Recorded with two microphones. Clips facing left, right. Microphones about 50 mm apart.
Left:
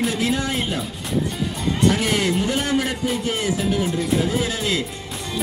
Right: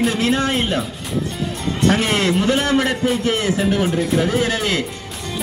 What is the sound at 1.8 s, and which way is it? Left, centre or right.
Speech, right.